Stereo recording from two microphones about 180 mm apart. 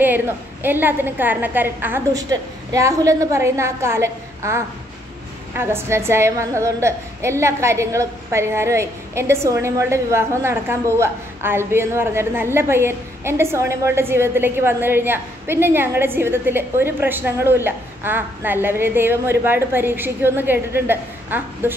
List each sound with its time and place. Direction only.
0.0 s a woman's voice: 10° right (ahead or behind)